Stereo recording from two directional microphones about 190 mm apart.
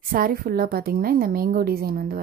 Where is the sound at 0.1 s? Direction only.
50° right (ahead or behind).